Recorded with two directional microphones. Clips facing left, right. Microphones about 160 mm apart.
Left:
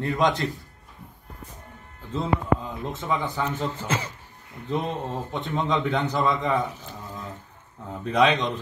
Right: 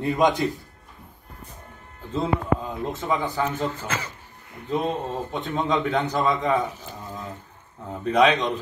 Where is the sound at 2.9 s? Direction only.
5° right (ahead or behind).